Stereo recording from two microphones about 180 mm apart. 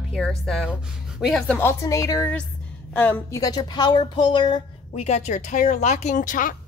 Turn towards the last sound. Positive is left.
turn(degrees=50)  # may be behind; listen again after turning